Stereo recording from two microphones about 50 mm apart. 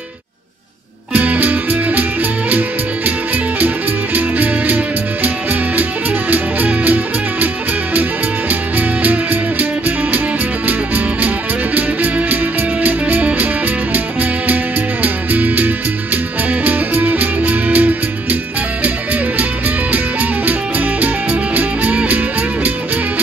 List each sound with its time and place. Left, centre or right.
1.1 s music: right
3.5 s music: right
14.5 s music: right
19.9 s music: right